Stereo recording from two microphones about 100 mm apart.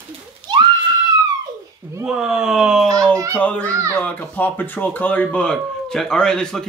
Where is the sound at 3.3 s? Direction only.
15° left (ahead or behind).